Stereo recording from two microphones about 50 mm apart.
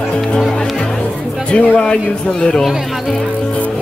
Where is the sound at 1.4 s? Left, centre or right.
Centre.